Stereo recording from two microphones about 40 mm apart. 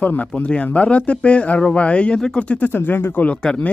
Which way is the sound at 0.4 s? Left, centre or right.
Left.